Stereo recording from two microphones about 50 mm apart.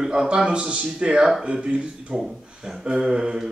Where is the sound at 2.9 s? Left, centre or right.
Centre.